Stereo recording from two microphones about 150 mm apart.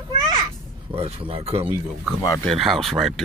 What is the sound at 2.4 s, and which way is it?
Speech, centre (ahead or behind).